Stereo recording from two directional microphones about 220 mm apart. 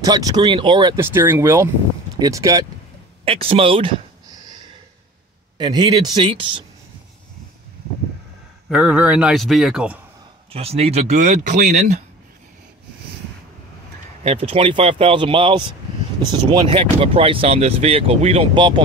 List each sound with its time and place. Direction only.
0.0 s speech: 15° right (ahead or behind)
0.9 s speech: 10° right (ahead or behind)
5.6 s speech: 20° right (ahead or behind)
8.6 s a man's voice: 5° right (ahead or behind)
10.5 s speech: 25° right (ahead or behind)
14.2 s speech: 25° right (ahead or behind)